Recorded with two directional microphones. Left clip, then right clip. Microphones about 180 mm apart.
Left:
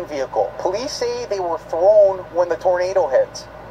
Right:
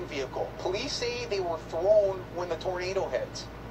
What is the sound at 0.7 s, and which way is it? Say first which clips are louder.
Speech: left 9 dB; 30° left (ahead or behind).